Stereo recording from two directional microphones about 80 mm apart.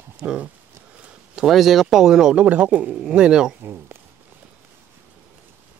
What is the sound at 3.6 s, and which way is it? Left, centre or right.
Speech, right.